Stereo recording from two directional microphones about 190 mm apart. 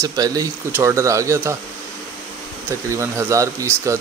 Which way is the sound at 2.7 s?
15° right (ahead or behind).